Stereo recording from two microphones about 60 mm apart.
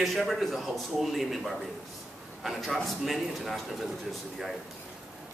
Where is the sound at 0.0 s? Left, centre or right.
Centre.